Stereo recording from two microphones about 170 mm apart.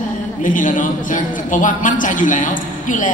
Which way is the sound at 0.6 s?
50° left (ahead or behind).